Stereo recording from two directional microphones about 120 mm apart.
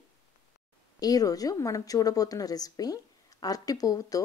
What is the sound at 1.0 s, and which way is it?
Speech, 30° left (ahead or behind).